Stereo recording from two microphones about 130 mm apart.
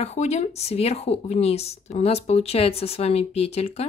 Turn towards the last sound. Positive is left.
turn(degrees=50)  # may be behind; listen again after turning